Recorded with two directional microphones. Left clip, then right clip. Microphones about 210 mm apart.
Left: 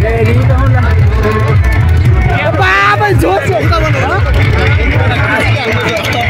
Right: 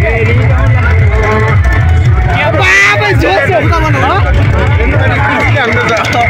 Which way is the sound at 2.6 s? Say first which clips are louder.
Right 1 dB; 15° left (ahead or behind).